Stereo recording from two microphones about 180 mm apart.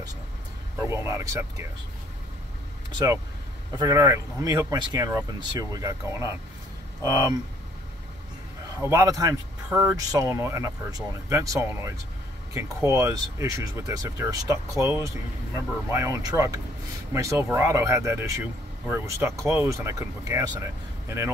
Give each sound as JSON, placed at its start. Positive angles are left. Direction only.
{"t": 0.8, "sound": "speech", "side_deg": -15}
{"t": 3.7, "sound": "speech", "side_deg": -20}
{"t": 8.6, "sound": "a man's voice", "side_deg": -20}